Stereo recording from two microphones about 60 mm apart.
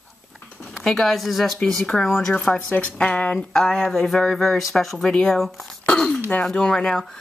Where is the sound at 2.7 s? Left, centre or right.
Left.